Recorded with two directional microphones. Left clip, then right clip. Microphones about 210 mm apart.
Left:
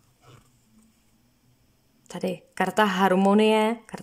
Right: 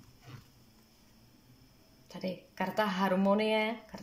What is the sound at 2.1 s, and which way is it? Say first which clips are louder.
Speech: left 9 dB; 45° left (ahead or behind).